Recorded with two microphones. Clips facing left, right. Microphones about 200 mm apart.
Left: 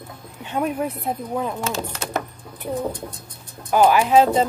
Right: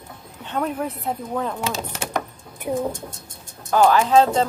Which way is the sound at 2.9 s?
45° right (ahead or behind).